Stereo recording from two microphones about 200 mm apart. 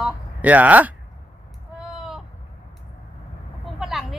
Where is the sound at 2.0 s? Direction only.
Centre (ahead or behind).